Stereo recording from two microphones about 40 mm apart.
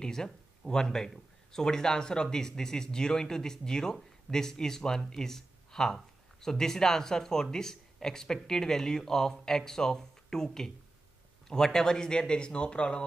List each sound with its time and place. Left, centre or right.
0.0 s a man's voice: centre